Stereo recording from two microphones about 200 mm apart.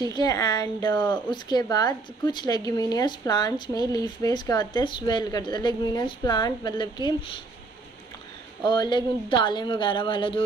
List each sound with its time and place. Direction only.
0.1 s speech: 20° left (ahead or behind)
8.6 s speech: 20° left (ahead or behind)